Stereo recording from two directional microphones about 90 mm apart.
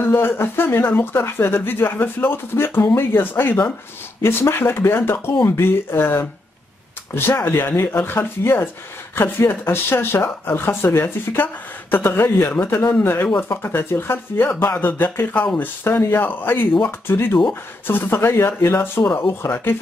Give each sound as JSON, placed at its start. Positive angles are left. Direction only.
{"t": 0.0, "sound": "speech", "side_deg": 25}